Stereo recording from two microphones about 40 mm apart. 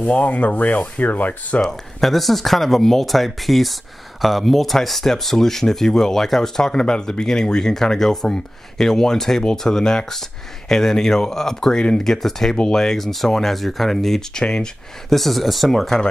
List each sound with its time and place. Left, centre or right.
0.0 s speech: left
1.6 s speech: centre
14.4 s speech: centre
15.1 s speech: centre